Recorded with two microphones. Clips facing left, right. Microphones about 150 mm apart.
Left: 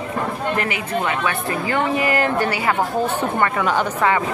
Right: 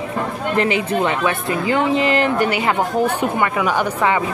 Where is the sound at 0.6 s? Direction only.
25° right (ahead or behind).